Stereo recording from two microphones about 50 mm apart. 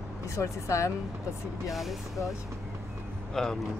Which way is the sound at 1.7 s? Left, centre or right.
Centre.